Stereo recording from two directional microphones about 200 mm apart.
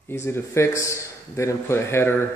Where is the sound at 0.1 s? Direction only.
15° left (ahead or behind).